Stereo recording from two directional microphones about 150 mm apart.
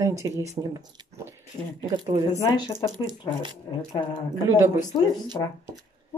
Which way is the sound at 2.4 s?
30° left (ahead or behind).